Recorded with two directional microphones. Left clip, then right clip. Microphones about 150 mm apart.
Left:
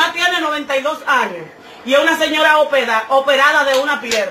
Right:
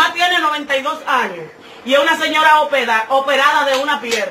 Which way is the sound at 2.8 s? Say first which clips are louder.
Even; centre (ahead or behind).